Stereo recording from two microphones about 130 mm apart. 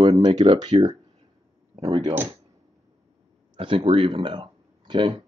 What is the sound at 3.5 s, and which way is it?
Speech, 45° right (ahead or behind).